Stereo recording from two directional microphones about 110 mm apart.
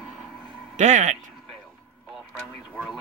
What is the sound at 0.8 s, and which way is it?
Music, 90° right.